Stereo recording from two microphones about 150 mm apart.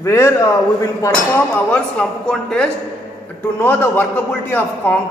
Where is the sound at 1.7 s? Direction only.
5° left (ahead or behind).